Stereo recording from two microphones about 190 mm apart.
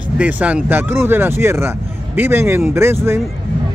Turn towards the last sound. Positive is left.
turn(degrees=-15)  # may be behind; listen again after turning